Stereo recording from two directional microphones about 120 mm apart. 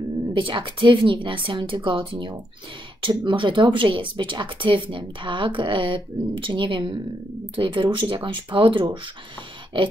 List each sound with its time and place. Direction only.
0.3 s speech: 45° right (ahead or behind)